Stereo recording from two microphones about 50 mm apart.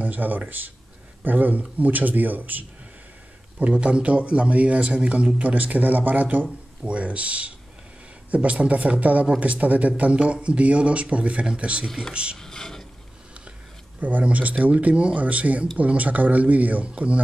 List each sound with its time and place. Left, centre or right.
0.0 s speech: right
5.5 s speech: right
6.8 s speech: right
12.4 s mechanisms: centre
14.2 s speech: right